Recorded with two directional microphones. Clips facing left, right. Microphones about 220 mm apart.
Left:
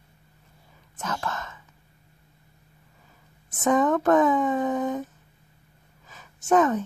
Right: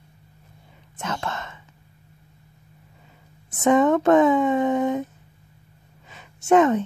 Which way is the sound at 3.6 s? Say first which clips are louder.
Right 4 dB; 25° right (ahead or behind).